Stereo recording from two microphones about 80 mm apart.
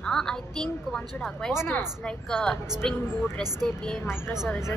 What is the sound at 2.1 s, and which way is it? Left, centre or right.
Speech, centre.